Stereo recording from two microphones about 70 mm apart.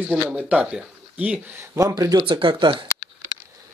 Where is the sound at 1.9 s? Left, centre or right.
Right.